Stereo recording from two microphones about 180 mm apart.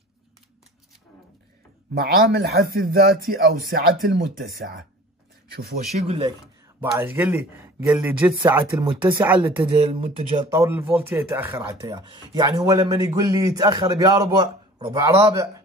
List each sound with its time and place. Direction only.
2.0 s speech: 60° right (ahead or behind)
5.9 s speech: 35° right (ahead or behind)
6.4 s speech: 10° right (ahead or behind)
9.8 s speech: 35° right (ahead or behind)
10.5 s speech: 15° right (ahead or behind)
11.5 s a man's voice: 25° right (ahead or behind)